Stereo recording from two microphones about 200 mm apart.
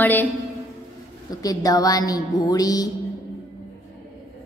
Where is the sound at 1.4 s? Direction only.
20° left (ahead or behind).